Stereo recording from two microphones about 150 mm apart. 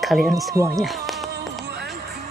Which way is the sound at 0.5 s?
20° right (ahead or behind).